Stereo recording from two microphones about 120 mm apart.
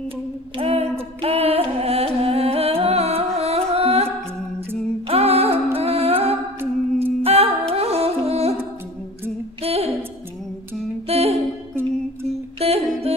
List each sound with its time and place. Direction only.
0.6 s music: 60° right (ahead or behind)
3.3 s carnatic music: 60° right (ahead or behind)
5.0 s humming: 60° right (ahead or behind)
5.8 s music: 55° right (ahead or behind)
6.6 s a capella: 15° right (ahead or behind)
7.2 s music: 55° right (ahead or behind)
9.6 s a sound: 55° right (ahead or behind)
11.1 s music: 60° right (ahead or behind)
12.5 s music: 55° right (ahead or behind)